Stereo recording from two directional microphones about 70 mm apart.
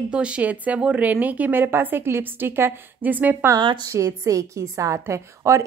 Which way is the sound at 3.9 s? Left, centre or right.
Right.